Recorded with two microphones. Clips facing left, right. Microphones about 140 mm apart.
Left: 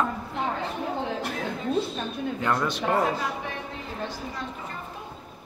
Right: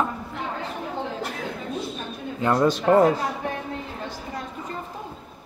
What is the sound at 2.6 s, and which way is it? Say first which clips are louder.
Speech: right 11 dB; 40° right (ahead or behind).